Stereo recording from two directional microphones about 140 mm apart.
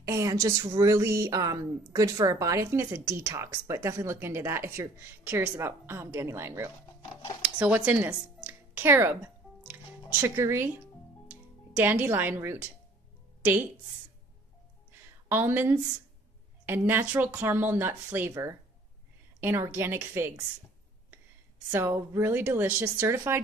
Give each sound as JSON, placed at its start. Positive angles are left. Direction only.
{"t": 0.0, "sound": "speech", "side_deg": -25}
{"t": 9.7, "sound": "music", "side_deg": -15}
{"t": 11.7, "sound": "a woman's voice", "side_deg": -15}
{"t": 14.9, "sound": "a sound", "side_deg": -15}
{"t": 16.6, "sound": "a woman's voice", "side_deg": -15}
{"t": 21.6, "sound": "a woman's voice", "side_deg": -15}